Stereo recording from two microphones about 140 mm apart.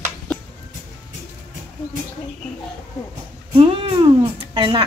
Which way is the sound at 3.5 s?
45° right (ahead or behind).